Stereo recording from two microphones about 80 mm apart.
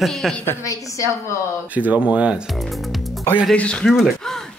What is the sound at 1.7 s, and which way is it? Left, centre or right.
Speech, centre.